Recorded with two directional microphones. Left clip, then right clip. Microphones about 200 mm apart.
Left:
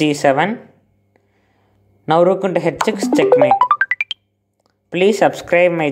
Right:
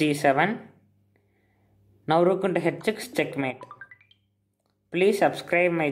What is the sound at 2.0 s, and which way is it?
Speech, 15° left (ahead or behind).